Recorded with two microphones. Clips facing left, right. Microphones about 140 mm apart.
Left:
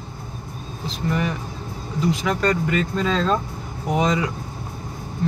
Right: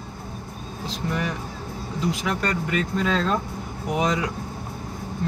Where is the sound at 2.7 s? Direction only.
5° right (ahead or behind).